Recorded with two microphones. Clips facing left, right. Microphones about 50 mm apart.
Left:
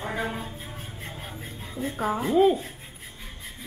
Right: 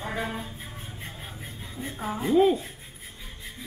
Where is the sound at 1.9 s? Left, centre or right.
Left.